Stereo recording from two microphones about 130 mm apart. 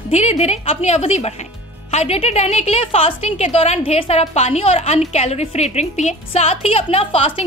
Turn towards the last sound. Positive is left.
turn(degrees=45)  # may be behind; listen again after turning